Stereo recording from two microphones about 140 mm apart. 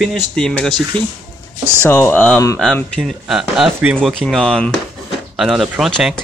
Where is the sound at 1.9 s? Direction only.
20° left (ahead or behind).